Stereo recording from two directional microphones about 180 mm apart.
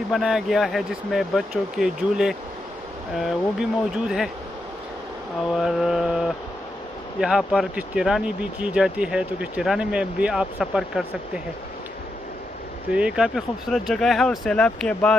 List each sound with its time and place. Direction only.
0.1 s speech: centre (ahead or behind)
5.4 s speech: centre (ahead or behind)
12.9 s speech: 5° right (ahead or behind)